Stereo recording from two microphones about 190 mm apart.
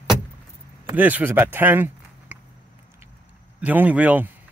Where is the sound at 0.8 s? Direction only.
10° right (ahead or behind).